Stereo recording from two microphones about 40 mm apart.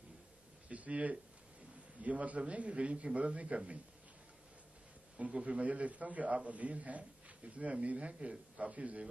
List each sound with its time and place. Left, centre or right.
0.7 s a man's voice: right
5.1 s a man's voice: right
5.4 s a man's voice: right